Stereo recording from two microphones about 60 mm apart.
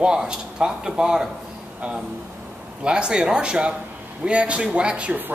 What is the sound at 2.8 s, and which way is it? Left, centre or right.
Speech, centre.